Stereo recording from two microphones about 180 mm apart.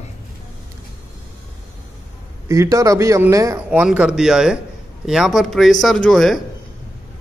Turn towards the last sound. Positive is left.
turn(degrees=0)  # may be behind; listen again after turning